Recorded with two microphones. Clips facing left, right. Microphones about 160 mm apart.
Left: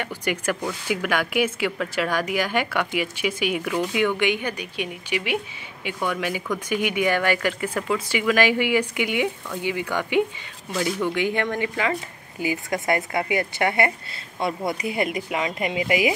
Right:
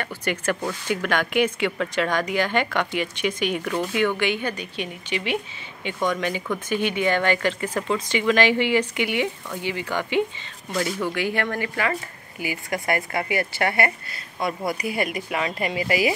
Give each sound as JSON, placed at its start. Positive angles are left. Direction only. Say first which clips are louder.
{"t": 0.0, "sound": "speech", "louder": "even", "side_deg": 10}
{"t": 11.1, "sound": "speech", "louder": "left 2 dB", "side_deg": 20}